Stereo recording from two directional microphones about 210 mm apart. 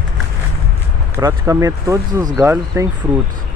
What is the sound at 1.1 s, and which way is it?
Speech, 15° right (ahead or behind).